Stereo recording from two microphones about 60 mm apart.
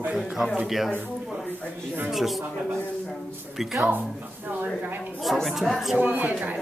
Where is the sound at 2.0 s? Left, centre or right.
Centre.